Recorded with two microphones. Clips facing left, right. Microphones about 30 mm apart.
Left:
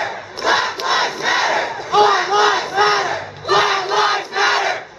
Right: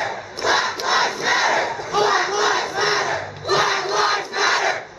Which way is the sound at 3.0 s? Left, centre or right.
Left.